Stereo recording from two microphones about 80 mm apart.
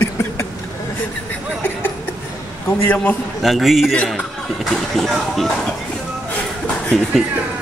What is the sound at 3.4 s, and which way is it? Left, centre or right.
Speech, centre.